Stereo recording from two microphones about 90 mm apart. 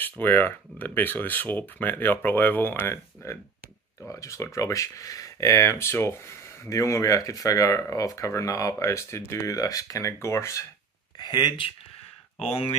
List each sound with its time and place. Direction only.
0.2 s speech: 20° left (ahead or behind)
11.1 s speech: 55° left (ahead or behind)